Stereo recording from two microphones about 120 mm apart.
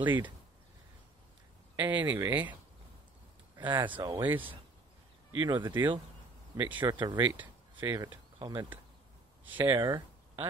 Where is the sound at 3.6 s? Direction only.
40° right (ahead or behind).